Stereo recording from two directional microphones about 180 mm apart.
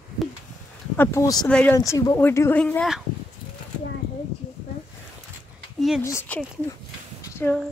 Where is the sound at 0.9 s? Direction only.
15° left (ahead or behind).